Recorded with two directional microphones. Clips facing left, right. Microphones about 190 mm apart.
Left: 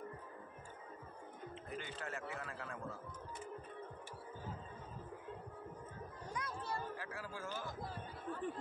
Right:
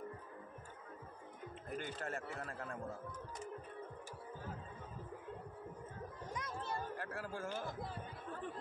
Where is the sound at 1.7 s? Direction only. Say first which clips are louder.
Right 4 dB; 45° right (ahead or behind).